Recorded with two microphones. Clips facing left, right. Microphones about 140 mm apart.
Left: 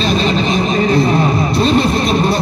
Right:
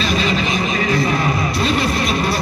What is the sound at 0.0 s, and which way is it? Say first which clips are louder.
Vehicle: left 4 dB; 25° left (ahead or behind).